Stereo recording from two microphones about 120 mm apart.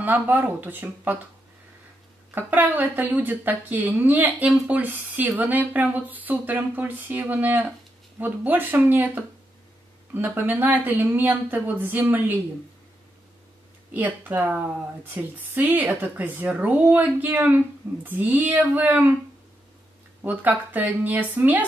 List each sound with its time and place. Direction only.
0.0 s speech: 15° right (ahead or behind)
2.3 s speech: 15° right (ahead or behind)
13.9 s speech: 15° right (ahead or behind)
20.2 s speech: 15° right (ahead or behind)